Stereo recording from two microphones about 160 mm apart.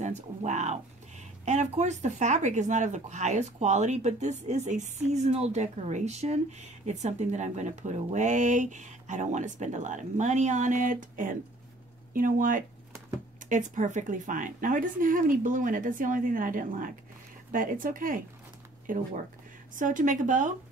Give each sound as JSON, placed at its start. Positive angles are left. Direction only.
{"t": 0.0, "sound": "a woman's voice", "side_deg": -45}